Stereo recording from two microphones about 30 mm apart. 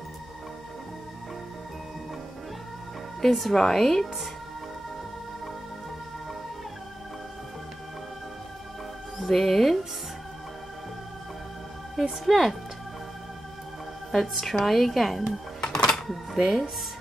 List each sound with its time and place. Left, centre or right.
3.2 s speech: centre
9.2 s speech: centre
11.9 s speech: centre
14.4 s speech: centre
15.7 s a sound: centre
16.1 s speech: centre